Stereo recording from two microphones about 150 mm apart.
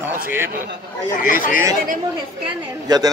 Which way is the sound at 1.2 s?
65° left (ahead or behind).